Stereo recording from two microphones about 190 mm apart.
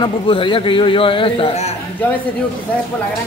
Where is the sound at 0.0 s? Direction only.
25° left (ahead or behind).